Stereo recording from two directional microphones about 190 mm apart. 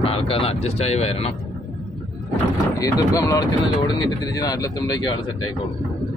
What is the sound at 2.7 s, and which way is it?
Speech, 20° left (ahead or behind).